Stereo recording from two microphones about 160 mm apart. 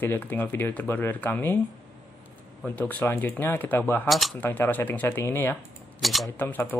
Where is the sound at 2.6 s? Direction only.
10° left (ahead or behind).